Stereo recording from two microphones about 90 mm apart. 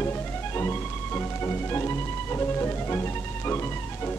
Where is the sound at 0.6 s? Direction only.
30° left (ahead or behind).